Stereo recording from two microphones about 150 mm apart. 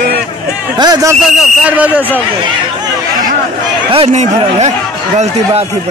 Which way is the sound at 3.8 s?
45° right (ahead or behind).